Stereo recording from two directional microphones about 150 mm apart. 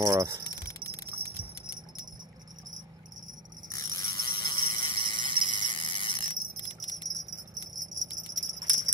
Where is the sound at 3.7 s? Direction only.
25° left (ahead or behind).